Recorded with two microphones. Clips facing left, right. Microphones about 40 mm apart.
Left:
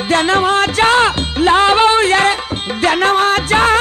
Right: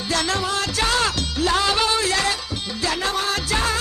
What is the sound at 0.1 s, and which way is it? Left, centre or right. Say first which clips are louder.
Music: left 10 dB; left.